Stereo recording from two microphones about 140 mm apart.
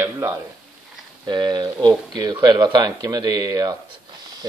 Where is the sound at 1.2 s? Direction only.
30° right (ahead or behind).